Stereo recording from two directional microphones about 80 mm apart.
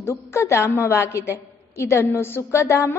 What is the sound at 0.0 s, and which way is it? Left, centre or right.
A woman's voice, left.